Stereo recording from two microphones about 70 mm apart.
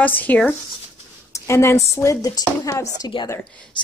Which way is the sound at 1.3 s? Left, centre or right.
Left.